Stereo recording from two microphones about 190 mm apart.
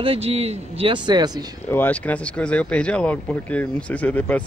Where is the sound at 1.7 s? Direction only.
10° left (ahead or behind).